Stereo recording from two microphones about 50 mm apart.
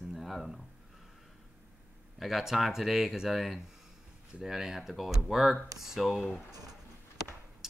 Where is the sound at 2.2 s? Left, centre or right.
Centre.